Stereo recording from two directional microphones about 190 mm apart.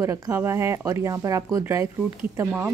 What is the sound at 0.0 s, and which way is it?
Speech, 15° right (ahead or behind).